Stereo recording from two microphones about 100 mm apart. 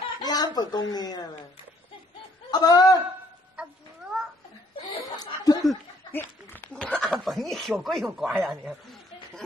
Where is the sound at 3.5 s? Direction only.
10° right (ahead or behind).